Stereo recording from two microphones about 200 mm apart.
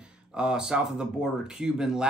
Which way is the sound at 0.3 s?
5° right (ahead or behind).